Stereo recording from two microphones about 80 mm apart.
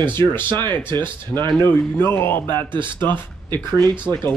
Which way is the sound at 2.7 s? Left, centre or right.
Right.